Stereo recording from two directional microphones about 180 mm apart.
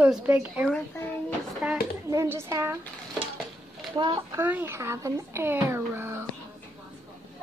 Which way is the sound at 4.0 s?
25° right (ahead or behind).